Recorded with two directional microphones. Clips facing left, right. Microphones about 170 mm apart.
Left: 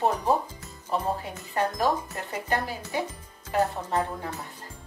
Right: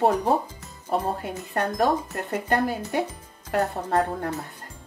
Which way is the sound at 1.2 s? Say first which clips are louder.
Right 1 dB; 60° right (ahead or behind).